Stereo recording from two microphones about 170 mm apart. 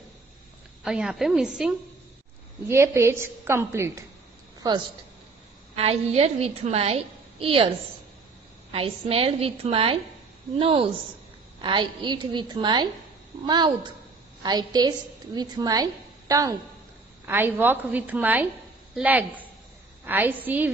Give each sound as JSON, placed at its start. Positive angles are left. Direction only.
{"t": 0.8, "sound": "a woman's voice", "side_deg": -5}
{"t": 2.7, "sound": "a woman's voice", "side_deg": -15}
{"t": 5.8, "sound": "a woman's voice", "side_deg": -35}
{"t": 8.7, "sound": "a woman's voice", "side_deg": -35}